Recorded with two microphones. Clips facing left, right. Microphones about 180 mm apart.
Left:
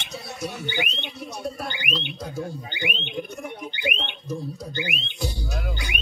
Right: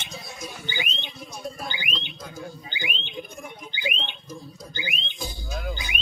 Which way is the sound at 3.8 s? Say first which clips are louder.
Left 2 dB; 60° left (ahead or behind).